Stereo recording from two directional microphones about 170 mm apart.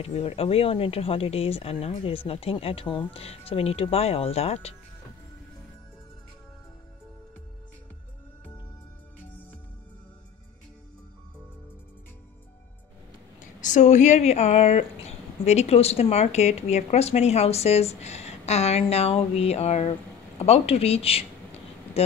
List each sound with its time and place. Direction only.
0.0 s speech: 35° left (ahead or behind)
13.4 s speech: 45° left (ahead or behind)